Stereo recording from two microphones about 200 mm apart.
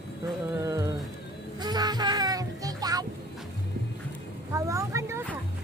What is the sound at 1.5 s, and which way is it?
Music, 20° right (ahead or behind).